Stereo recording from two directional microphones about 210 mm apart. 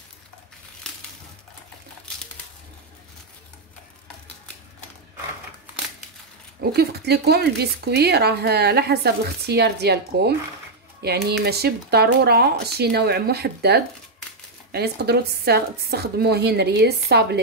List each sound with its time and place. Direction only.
6.7 s speech: 50° right (ahead or behind)